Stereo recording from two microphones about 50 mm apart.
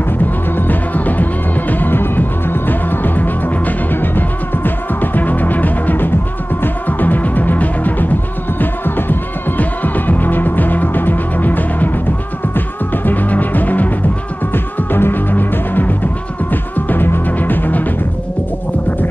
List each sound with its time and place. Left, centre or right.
0.6 s music: left
8.5 s music: left